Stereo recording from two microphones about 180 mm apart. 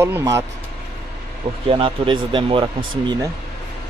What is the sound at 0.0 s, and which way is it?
Speech, 15° right (ahead or behind).